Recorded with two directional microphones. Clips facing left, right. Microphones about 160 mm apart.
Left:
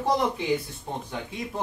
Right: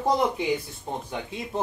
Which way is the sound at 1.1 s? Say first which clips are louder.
Right 1 dB; 25° right (ahead or behind).